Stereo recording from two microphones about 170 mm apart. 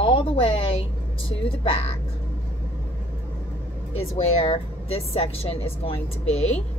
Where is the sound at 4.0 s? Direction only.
35° left (ahead or behind).